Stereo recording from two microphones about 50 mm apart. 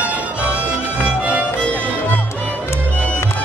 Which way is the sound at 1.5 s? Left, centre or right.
Left.